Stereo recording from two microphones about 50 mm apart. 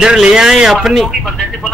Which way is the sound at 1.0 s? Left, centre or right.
Centre.